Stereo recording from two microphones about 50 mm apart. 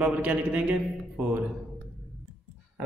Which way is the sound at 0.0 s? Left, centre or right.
Right.